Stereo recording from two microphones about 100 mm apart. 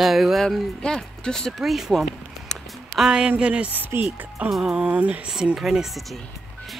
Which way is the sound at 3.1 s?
10° right (ahead or behind).